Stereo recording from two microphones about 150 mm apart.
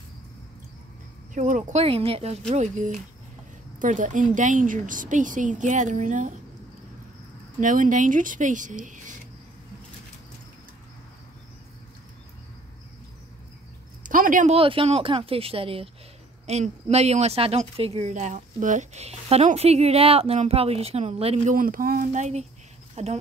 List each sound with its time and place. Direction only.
1.3 s a woman's voice: 55° right (ahead or behind)
2.5 s a woman's voice: 55° right (ahead or behind)
7.6 s a woman's voice: 60° right (ahead or behind)
14.0 s a sound: 65° right (ahead or behind)
14.5 s a woman's voice: 35° right (ahead or behind)
21.5 s speech: 70° right (ahead or behind)
22.1 s a woman's voice: 50° right (ahead or behind)